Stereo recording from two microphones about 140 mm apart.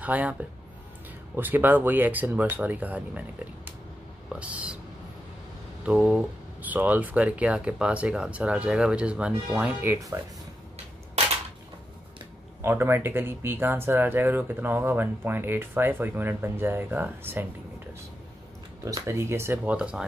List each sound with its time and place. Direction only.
0.0 s speech: 10° right (ahead or behind)
4.3 s whispering: 10° right (ahead or behind)
5.9 s speech: 10° right (ahead or behind)
12.6 s speech: 15° right (ahead or behind)
18.9 s speech: 20° right (ahead or behind); by 20.1 s 5° right (ahead or behind)